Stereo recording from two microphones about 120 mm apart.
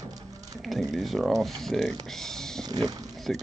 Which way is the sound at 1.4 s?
Centre (ahead or behind).